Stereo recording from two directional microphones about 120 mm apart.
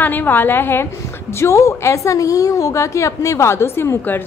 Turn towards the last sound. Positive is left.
turn(degrees=20)  # may be behind; listen again after turning